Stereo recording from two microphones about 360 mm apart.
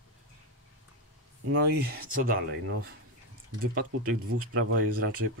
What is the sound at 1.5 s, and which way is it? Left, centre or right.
Speech, right.